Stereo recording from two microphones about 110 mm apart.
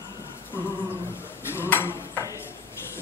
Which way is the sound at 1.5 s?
20° left (ahead or behind).